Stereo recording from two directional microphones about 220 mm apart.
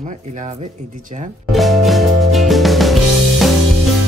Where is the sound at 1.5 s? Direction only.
Centre (ahead or behind).